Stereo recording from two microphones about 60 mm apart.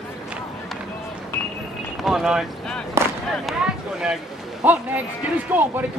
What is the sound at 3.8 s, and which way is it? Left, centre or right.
Speech, centre.